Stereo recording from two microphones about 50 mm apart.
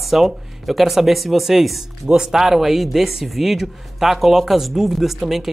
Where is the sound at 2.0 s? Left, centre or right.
Centre.